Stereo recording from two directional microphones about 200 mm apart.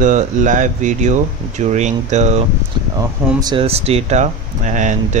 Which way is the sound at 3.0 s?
20° right (ahead or behind).